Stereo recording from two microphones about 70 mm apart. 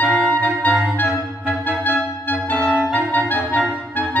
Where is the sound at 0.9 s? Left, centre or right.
Left.